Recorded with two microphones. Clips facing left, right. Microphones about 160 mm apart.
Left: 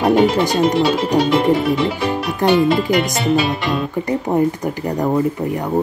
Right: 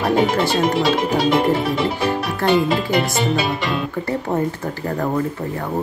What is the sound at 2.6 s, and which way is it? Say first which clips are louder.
Speech: left 3 dB; centre (ahead or behind).